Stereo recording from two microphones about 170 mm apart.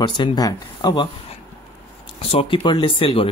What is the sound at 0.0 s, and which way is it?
Speech, 25° left (ahead or behind).